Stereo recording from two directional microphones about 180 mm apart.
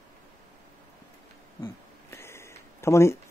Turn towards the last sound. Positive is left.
turn(degrees=15)  # may be behind; listen again after turning